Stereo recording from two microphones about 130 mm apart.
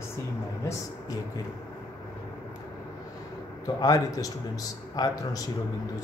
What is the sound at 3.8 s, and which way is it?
Speech, 30° left (ahead or behind).